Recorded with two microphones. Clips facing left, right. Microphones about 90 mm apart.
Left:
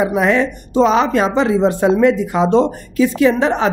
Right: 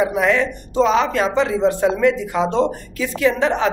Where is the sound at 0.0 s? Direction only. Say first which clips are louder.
Left 2 dB; 20° left (ahead or behind).